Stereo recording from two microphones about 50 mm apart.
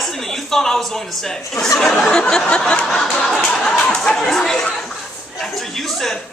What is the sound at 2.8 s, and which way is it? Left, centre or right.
Speech, centre.